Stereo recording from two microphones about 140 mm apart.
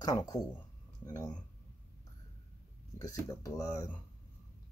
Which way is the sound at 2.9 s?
25° left (ahead or behind).